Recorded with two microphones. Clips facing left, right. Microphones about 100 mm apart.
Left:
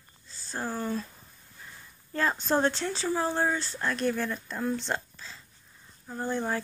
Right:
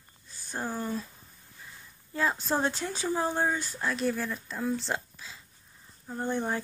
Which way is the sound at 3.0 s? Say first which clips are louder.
Even; 20° right (ahead or behind).